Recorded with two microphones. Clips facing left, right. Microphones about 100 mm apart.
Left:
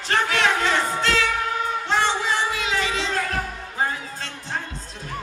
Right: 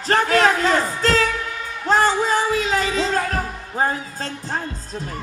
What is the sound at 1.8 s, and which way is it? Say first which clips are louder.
Music: right 7 dB; 40° right (ahead or behind).